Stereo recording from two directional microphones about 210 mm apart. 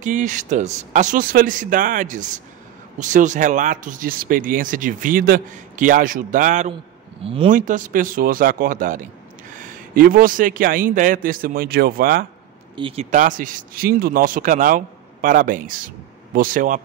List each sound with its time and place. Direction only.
0.0 s speech: 35° right (ahead or behind)
7.2 s speech: 25° right (ahead or behind)
7.5 s speech: 40° right (ahead or behind)
12.7 s speech: 25° right (ahead or behind)